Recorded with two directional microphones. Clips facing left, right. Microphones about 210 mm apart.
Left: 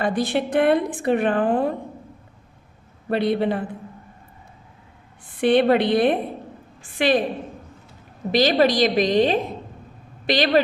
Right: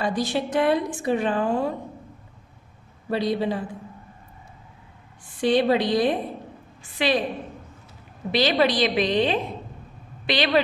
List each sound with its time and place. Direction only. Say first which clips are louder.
0.0 s a woman's voice: left 3 dB; 55° left (ahead or behind)
3.1 s a woman's voice: left 3 dB; 60° left (ahead or behind)
5.3 s a woman's voice: left 3 dB; 60° left (ahead or behind)
8.3 s a woman's voice: left 3 dB; 45° left (ahead or behind)